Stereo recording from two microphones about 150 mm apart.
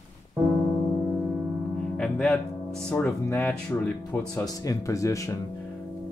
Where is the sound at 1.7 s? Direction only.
5° left (ahead or behind).